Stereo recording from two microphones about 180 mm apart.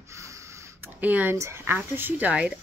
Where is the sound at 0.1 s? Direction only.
15° right (ahead or behind).